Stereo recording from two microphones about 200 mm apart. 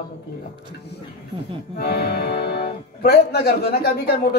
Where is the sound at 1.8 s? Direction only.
55° left (ahead or behind).